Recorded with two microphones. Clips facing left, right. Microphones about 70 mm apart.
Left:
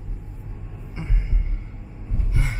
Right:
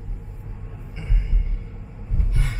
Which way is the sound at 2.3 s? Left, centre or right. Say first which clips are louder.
Left 2 dB; centre.